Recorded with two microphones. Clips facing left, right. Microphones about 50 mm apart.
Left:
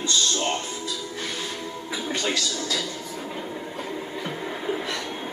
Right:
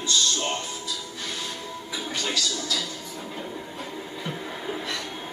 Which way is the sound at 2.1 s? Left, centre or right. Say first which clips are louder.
Left 2 dB; left.